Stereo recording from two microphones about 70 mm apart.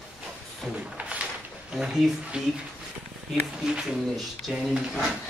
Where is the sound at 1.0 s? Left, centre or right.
Centre.